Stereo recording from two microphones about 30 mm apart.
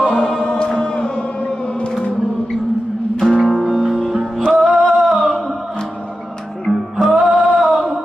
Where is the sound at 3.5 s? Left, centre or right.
Centre.